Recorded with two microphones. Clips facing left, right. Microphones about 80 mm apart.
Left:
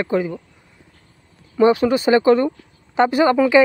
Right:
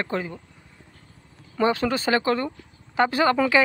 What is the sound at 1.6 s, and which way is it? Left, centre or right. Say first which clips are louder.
Speech: left 7 dB; centre.